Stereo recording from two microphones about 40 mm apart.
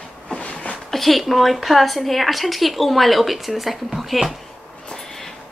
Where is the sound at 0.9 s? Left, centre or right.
Centre.